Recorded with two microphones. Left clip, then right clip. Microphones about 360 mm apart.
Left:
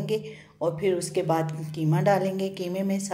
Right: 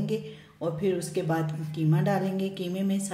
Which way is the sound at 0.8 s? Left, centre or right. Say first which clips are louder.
Left 1 dB; centre.